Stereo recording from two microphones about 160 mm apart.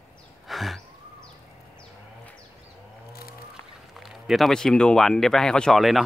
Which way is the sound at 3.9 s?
Centre (ahead or behind).